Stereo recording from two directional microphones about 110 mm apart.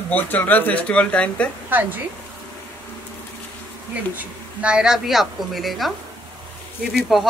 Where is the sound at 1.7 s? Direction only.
15° right (ahead or behind).